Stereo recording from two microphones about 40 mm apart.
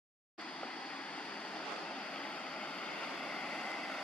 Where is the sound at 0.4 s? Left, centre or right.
Left.